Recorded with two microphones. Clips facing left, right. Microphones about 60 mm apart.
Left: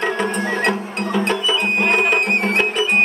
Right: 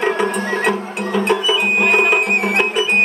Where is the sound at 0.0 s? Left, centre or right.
Centre.